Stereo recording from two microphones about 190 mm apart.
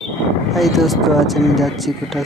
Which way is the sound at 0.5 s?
Centre (ahead or behind).